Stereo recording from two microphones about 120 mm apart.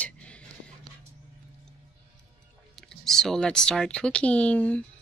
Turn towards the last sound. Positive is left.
turn(degrees=10)  # may be behind; listen again after turning